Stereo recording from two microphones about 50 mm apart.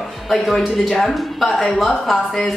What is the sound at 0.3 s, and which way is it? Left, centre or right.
A woman's voice, centre.